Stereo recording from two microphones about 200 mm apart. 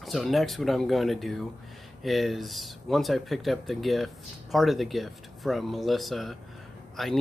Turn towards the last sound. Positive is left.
turn(degrees=0)  # may be behind; listen again after turning